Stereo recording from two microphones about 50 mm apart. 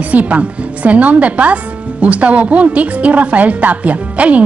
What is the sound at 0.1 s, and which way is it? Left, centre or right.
A woman's voice, right.